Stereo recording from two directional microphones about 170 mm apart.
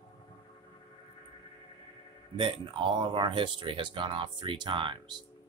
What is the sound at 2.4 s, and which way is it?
Speech, 30° right (ahead or behind).